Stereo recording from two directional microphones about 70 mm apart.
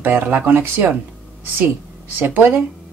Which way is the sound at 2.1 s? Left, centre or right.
Right.